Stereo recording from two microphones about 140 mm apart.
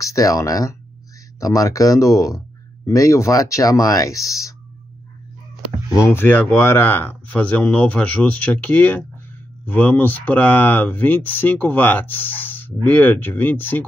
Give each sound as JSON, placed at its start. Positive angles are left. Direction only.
{"t": 0.0, "sound": "speech", "side_deg": 25}
{"t": 5.9, "sound": "speech", "side_deg": 15}